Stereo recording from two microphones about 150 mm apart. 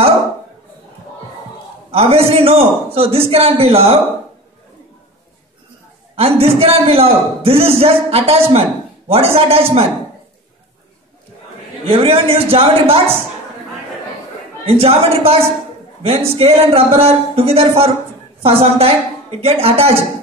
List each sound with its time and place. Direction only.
1.9 s a woman's voice: 40° right (ahead or behind)
6.1 s speech: 40° right (ahead or behind)
11.8 s speech: 40° right (ahead or behind)
14.6 s a woman's voice: 40° right (ahead or behind)